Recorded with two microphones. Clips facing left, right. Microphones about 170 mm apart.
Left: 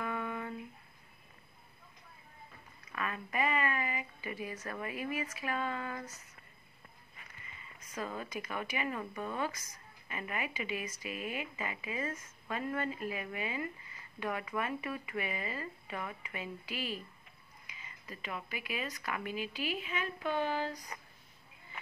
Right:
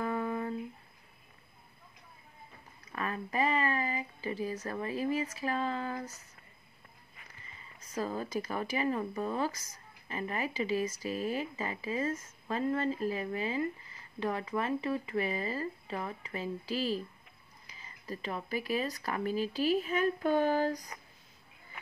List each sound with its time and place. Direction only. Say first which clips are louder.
0.0 s a sound: right 5 dB; 35° right (ahead or behind)
2.9 s speech: right 3 dB; 30° right (ahead or behind)
7.5 s speech: right 5 dB; 35° right (ahead or behind)